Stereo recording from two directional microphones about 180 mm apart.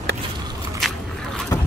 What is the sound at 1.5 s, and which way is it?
Boat, 20° left (ahead or behind).